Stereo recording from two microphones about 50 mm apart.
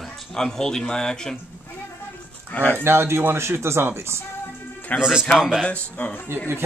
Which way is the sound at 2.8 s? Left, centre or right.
Right.